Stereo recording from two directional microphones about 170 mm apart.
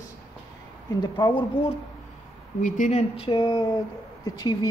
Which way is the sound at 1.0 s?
25° left (ahead or behind).